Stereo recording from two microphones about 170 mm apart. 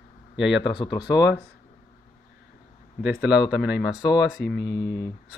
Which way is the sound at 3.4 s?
80° left.